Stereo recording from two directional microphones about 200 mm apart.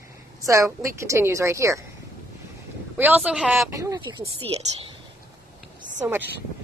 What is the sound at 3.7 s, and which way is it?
Speech, 15° right (ahead or behind).